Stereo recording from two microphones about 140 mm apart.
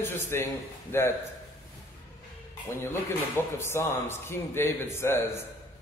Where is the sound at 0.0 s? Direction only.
15° left (ahead or behind).